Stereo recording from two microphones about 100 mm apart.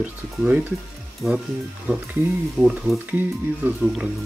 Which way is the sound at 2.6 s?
5° right (ahead or behind).